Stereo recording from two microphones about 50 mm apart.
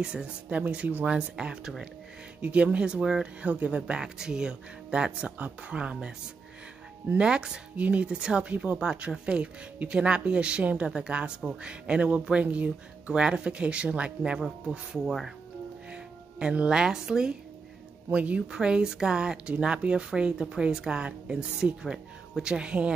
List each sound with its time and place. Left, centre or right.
0.0 s a woman's voice: centre
3.4 s speech: right
4.0 s speech: centre
7.2 s speech: centre
7.7 s speech: right
14.7 s a woman's voice: centre
15.9 s speech: right
18.1 s a woman's voice: right